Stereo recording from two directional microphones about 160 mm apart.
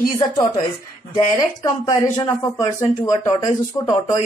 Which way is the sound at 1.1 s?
25° left (ahead or behind).